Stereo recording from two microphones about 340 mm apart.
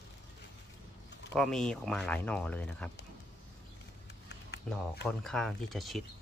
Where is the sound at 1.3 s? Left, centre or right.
Centre.